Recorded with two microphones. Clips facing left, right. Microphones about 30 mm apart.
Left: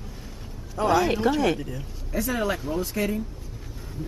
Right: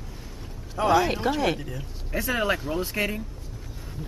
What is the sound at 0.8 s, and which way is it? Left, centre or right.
Speech, centre.